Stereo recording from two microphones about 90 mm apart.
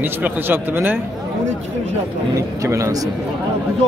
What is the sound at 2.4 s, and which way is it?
Speech, 35° right (ahead or behind).